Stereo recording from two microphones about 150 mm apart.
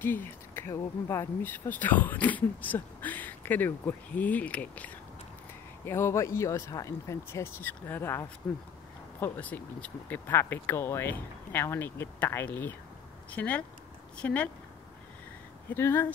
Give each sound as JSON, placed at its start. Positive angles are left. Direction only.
{"t": 0.0, "sound": "speech", "side_deg": 15}
{"t": 15.7, "sound": "speech", "side_deg": 15}